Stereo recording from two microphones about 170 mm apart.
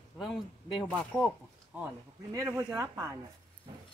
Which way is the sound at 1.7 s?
10° right (ahead or behind).